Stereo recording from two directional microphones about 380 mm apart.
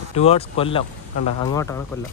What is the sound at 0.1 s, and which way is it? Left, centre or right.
Speech, centre.